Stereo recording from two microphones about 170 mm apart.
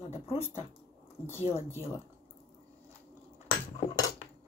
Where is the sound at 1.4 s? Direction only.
35° left (ahead or behind).